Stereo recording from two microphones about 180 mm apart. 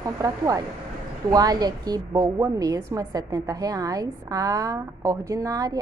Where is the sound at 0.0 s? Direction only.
20° right (ahead or behind).